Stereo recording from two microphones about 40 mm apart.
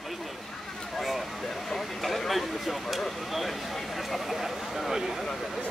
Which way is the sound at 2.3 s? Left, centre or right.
Centre.